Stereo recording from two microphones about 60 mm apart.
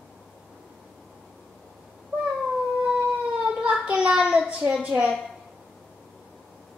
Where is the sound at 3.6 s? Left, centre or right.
Right.